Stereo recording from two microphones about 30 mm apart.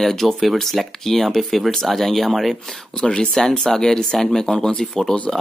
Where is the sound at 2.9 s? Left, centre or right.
Left.